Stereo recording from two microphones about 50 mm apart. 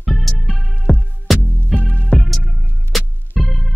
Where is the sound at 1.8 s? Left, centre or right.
Left.